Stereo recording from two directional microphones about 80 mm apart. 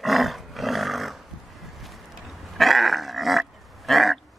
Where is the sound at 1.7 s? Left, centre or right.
Centre.